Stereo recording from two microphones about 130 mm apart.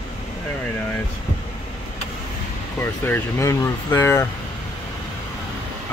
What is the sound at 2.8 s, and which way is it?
Speech, 20° left (ahead or behind).